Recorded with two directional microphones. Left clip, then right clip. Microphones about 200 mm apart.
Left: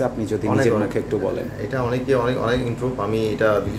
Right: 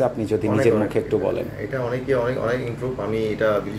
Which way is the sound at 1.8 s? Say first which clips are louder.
Left 2 dB; 20° left (ahead or behind).